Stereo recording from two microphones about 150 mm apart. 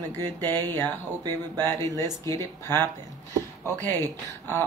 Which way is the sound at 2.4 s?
15° left (ahead or behind).